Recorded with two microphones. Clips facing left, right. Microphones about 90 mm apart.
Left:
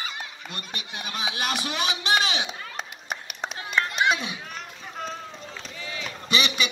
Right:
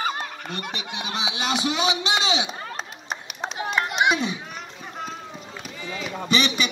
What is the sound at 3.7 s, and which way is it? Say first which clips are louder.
Run: right 1 dB; 25° right (ahead or behind).